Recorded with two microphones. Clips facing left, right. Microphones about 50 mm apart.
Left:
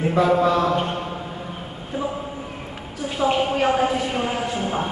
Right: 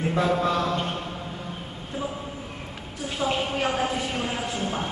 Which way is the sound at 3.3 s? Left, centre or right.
Centre.